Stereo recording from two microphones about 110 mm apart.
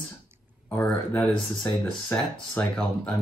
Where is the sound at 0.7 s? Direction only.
15° left (ahead or behind).